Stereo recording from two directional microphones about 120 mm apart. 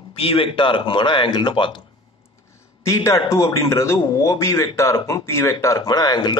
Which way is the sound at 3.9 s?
35° left (ahead or behind).